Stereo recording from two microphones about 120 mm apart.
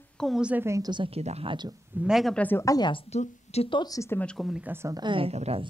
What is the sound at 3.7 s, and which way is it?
Speech, 40° left (ahead or behind).